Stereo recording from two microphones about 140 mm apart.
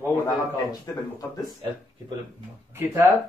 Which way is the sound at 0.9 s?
20° left (ahead or behind).